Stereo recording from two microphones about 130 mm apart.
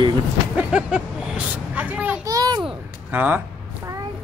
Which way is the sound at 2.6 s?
15° right (ahead or behind).